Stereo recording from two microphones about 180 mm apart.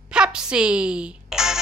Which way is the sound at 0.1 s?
5° right (ahead or behind).